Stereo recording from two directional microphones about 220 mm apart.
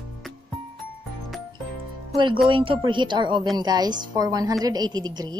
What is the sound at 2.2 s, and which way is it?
A woman's voice, 20° right (ahead or behind).